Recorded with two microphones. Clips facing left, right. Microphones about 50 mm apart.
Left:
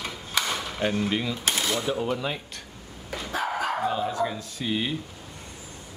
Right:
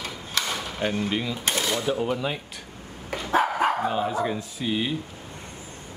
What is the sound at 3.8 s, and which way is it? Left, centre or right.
Speech, centre.